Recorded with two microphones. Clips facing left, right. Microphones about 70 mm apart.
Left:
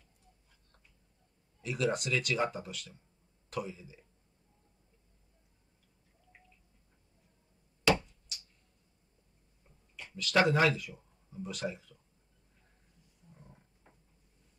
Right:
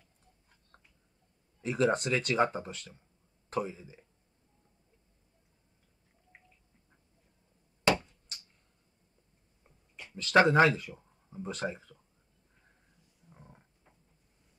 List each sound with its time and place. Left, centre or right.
1.6 s speech: right
6.3 s cat: right
8.3 s a sound: right
9.9 s speech: right